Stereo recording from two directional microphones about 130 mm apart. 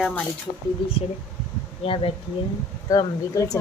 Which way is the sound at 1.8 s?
45° left (ahead or behind).